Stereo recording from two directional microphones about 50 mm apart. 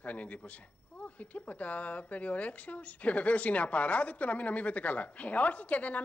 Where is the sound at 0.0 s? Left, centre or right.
Left.